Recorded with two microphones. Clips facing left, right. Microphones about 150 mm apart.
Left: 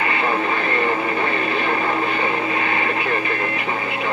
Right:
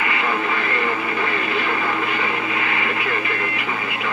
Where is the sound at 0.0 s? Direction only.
35° left (ahead or behind).